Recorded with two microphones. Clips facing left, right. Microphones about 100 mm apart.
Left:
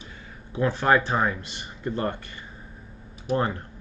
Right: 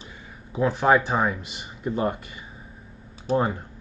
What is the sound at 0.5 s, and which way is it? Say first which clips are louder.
Speech: right 2 dB; 5° right (ahead or behind).